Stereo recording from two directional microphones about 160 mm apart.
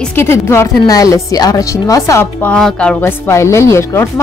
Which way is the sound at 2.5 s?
5° left (ahead or behind).